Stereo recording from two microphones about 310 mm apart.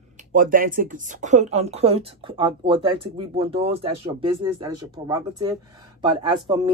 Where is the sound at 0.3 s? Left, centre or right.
Right.